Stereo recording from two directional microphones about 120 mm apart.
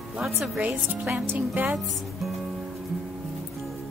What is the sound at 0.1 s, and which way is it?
A woman's voice, 10° right (ahead or behind).